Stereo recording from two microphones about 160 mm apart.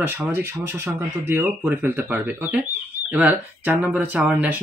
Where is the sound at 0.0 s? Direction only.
15° right (ahead or behind).